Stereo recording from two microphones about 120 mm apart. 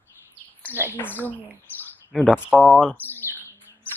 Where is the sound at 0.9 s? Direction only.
15° left (ahead or behind).